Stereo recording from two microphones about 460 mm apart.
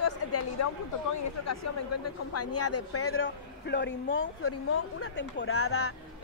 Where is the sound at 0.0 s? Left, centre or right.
Left.